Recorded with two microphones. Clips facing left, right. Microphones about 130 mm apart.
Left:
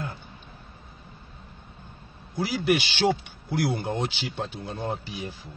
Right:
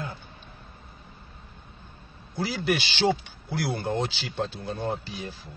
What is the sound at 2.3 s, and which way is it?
Speech, 15° left (ahead or behind).